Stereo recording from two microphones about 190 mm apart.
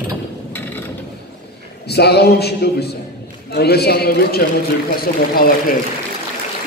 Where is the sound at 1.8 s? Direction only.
60° left (ahead or behind).